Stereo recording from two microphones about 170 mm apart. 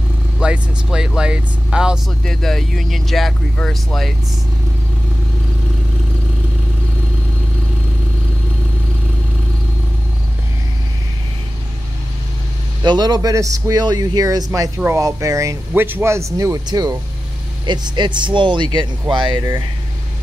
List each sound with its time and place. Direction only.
0.4 s speech: 5° right (ahead or behind)
12.8 s speech: 25° right (ahead or behind)